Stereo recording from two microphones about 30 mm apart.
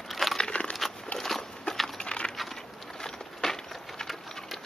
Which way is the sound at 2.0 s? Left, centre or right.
Left.